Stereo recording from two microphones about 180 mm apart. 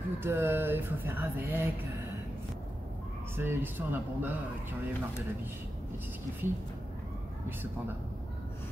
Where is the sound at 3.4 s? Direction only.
10° right (ahead or behind).